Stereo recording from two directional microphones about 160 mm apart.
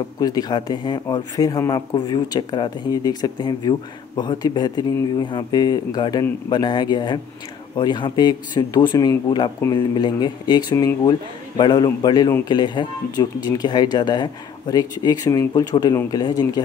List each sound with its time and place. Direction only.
0.2 s a man's voice: 25° left (ahead or behind)